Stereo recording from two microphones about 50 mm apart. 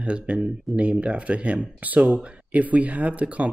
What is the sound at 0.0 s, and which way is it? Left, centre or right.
Speech, right.